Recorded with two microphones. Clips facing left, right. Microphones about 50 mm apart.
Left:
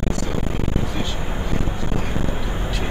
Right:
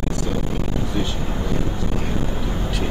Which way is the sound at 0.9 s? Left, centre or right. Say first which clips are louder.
Right 2 dB; left.